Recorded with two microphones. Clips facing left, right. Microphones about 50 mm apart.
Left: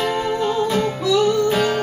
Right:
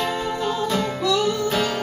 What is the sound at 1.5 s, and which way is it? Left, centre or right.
Music, centre.